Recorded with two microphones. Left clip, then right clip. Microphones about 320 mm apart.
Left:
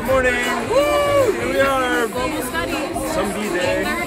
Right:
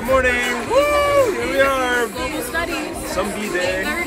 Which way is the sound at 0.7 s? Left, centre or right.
Centre.